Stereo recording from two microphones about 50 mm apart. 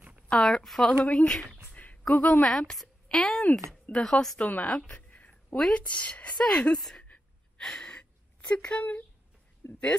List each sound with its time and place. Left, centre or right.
0.3 s a woman's voice: centre
0.8 s speech: left
1.2 s speech: centre
1.8 s a sound: left
2.4 s a woman's voice: centre
4.4 s a sound: left
5.7 s speech: left
6.3 s speech: centre
7.0 s a sound: left
9.6 s speech: left